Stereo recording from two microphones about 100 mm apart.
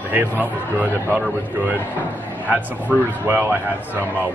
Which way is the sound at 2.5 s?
15° right (ahead or behind).